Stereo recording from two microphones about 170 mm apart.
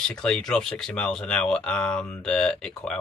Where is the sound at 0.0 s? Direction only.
5° left (ahead or behind).